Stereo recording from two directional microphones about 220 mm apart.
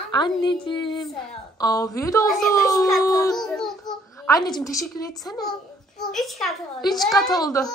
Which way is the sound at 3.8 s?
15° left (ahead or behind).